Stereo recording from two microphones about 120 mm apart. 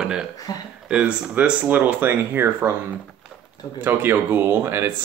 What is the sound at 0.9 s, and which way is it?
Speech, 10° right (ahead or behind).